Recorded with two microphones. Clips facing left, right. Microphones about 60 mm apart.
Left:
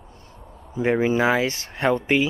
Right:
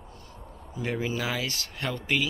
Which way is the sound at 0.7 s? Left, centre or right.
Left.